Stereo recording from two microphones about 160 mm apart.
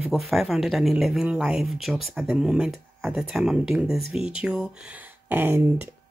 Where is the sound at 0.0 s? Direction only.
Centre (ahead or behind).